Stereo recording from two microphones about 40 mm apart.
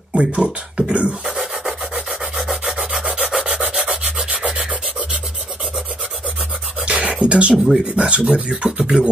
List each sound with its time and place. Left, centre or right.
0.1 s speech: right
1.2 s rub: centre
6.9 s beatboxing: right
7.6 s speech: centre